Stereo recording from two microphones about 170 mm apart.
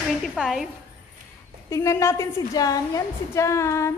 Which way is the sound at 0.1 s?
Centre (ahead or behind).